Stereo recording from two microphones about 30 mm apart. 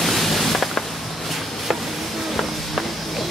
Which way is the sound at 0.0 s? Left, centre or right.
Centre.